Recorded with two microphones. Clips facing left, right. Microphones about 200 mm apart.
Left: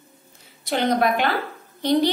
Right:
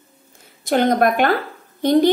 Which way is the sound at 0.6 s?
50° right (ahead or behind).